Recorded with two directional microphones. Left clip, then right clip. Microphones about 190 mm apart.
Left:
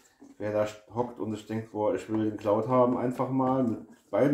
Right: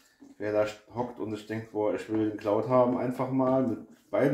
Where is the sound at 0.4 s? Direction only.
45° left (ahead or behind).